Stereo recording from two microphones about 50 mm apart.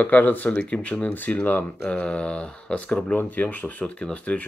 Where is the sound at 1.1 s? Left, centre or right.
Left.